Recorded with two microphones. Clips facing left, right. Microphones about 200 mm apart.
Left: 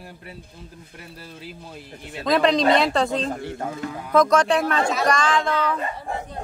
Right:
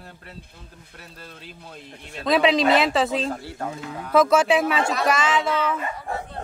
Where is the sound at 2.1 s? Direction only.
Centre (ahead or behind).